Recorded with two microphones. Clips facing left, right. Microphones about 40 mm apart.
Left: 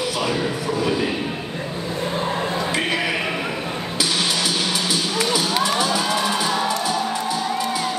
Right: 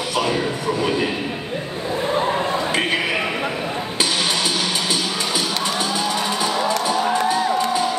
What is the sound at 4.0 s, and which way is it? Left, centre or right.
Music, right.